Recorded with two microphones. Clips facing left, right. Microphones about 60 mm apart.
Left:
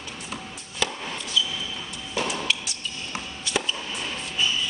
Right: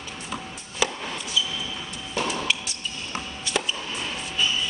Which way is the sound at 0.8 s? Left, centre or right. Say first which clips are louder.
Right 2 dB; centre.